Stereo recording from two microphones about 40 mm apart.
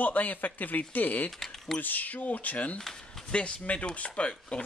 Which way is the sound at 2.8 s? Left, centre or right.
Centre.